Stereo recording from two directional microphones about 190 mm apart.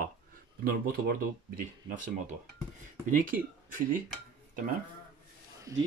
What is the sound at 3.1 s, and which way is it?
Speech, 45° right (ahead or behind).